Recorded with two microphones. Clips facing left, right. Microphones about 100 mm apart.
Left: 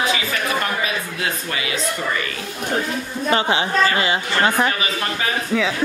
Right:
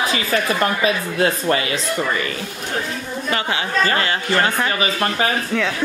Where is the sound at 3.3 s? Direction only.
25° left (ahead or behind).